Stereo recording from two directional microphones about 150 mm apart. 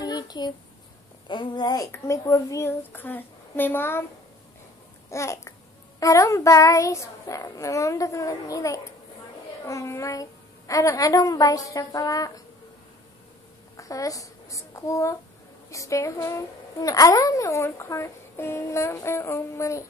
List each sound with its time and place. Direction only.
0.0 s a sound: 25° left (ahead or behind)
1.2 s a woman's voice: 30° left (ahead or behind); by 4.0 s 15° left (ahead or behind)
5.1 s a woman's voice: 20° left (ahead or behind)
13.7 s a child's voice: 20° left (ahead or behind)